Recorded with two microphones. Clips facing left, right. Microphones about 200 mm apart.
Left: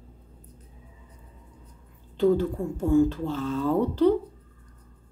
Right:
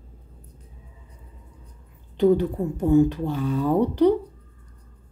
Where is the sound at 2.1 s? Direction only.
15° right (ahead or behind).